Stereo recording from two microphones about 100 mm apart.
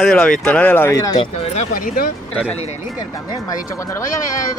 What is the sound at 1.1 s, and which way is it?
Speech, 70° left (ahead or behind).